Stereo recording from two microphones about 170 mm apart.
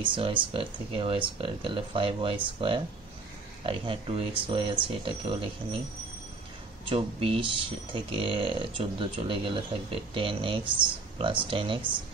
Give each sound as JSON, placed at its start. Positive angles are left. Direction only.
{"t": 0.0, "sound": "speech", "side_deg": -30}
{"t": 6.9, "sound": "speech", "side_deg": -30}